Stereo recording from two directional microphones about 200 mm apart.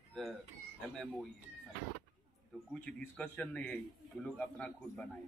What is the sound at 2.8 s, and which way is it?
A man's voice, 5° left (ahead or behind).